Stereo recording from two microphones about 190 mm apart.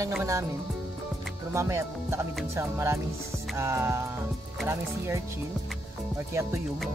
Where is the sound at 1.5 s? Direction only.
15° right (ahead or behind).